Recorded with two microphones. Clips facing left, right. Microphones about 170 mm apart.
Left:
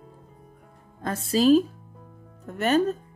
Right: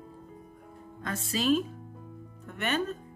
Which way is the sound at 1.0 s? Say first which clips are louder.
Left 8 dB; 35° left (ahead or behind).